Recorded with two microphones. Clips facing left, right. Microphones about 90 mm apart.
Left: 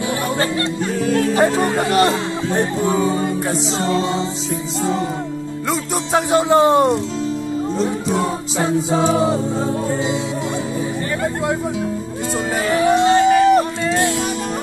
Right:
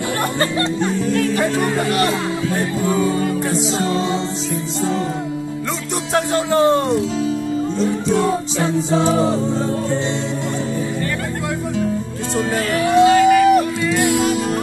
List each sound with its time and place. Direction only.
1.1 s speech: 30° left (ahead or behind)
6.3 s speech: 20° left (ahead or behind)
13.0 s music: 30° left (ahead or behind)